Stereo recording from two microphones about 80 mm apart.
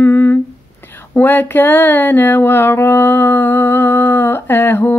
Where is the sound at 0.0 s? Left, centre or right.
Left.